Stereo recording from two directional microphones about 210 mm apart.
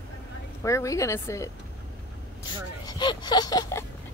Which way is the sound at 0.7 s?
15° left (ahead or behind).